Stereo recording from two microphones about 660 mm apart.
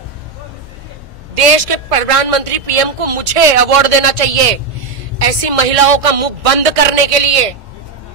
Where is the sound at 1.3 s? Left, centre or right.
Right.